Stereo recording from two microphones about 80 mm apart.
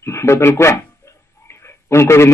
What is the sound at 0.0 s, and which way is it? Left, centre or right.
Speech, left.